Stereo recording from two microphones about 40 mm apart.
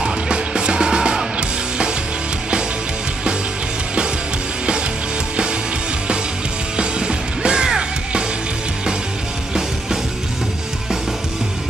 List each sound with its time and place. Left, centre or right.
0.0 s music: right
6.8 s music: right